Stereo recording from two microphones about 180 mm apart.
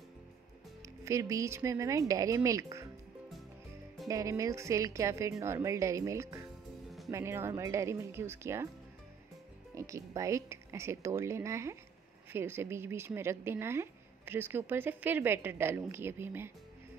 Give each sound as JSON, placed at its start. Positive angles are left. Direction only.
{"t": 0.8, "sound": "speech", "side_deg": -15}
{"t": 4.1, "sound": "speech", "side_deg": -15}
{"t": 9.8, "sound": "speech", "side_deg": -15}